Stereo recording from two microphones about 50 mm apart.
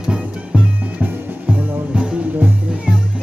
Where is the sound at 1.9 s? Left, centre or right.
Centre.